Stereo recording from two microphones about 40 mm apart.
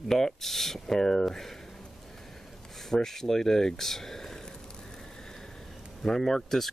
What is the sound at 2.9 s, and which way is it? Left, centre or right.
Speech, centre.